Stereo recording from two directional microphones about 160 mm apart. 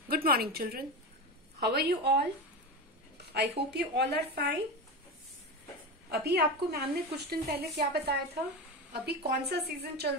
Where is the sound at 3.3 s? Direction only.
90° right.